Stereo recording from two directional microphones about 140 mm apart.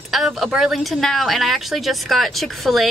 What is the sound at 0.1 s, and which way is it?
Speech, centre (ahead or behind).